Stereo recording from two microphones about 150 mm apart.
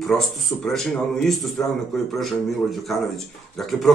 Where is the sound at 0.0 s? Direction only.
Centre (ahead or behind).